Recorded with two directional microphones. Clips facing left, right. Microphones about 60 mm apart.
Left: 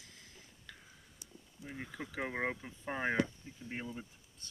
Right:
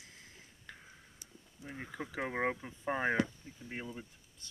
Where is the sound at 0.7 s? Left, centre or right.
Right.